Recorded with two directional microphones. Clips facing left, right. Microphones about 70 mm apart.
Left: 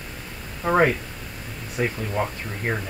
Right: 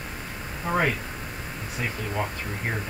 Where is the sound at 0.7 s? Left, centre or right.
Left.